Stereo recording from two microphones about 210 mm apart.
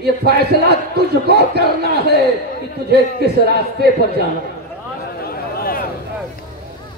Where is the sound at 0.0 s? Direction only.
50° right (ahead or behind).